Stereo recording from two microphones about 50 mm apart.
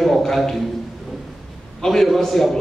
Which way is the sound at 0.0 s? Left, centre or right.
Centre.